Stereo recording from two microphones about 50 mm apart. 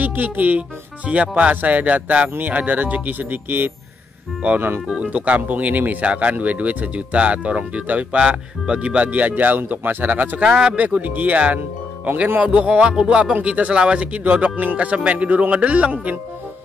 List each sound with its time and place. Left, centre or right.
0.0 s speech: right
4.8 s speech: right
10.4 s speech: centre
10.8 s speech: right